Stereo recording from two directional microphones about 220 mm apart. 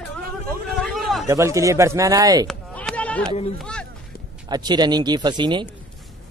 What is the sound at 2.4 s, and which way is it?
Bleat, 5° left (ahead or behind).